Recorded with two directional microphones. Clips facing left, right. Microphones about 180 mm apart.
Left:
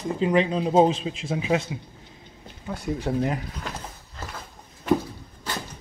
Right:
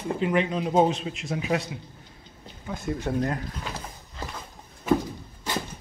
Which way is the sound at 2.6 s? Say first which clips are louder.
Left 2 dB; 10° left (ahead or behind).